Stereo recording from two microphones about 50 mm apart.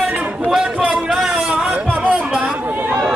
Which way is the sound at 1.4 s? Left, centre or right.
Centre.